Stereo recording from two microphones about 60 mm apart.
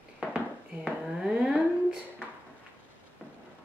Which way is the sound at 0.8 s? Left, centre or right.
Centre.